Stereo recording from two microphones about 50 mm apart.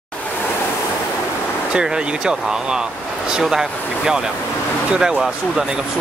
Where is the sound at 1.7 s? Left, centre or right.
Centre.